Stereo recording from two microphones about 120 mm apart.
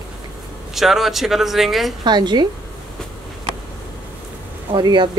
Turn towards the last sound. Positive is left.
turn(degrees=-40)  # may be behind; listen again after turning